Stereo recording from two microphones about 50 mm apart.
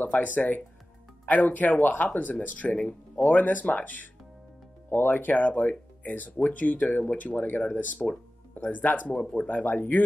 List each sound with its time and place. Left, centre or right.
0.1 s speech: left